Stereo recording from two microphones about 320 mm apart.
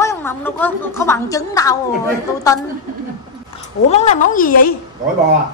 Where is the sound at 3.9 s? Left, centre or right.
Left.